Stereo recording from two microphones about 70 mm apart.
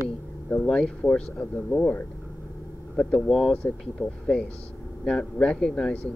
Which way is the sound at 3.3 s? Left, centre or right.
Centre.